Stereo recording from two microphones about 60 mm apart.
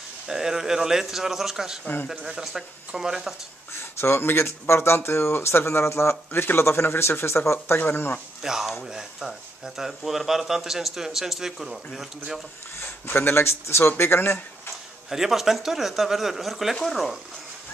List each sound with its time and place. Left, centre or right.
0.3 s speech: centre
4.0 s speech: left
8.4 s speech: centre
12.8 s speech: left
15.0 s speech: centre